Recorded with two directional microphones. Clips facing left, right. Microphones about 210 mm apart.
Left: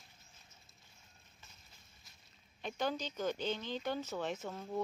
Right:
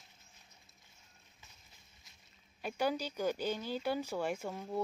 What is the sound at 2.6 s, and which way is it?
Speech, 10° right (ahead or behind).